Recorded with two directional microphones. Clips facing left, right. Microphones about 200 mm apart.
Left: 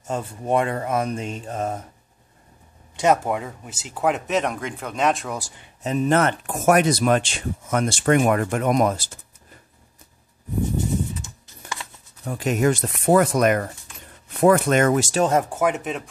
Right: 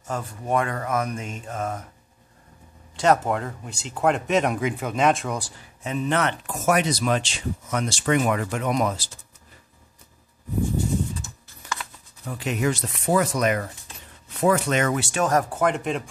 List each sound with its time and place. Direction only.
0.1 s speech: 25° left (ahead or behind)
3.0 s speech: 10° left (ahead or behind)
5.9 s speech: 45° left (ahead or behind)
11.4 s a sound: 20° left (ahead or behind)
12.3 s speech: 45° left (ahead or behind)
15.5 s speech: 5° left (ahead or behind)